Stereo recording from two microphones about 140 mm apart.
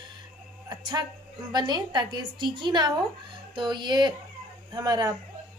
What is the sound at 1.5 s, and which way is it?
A woman's voice, 30° right (ahead or behind).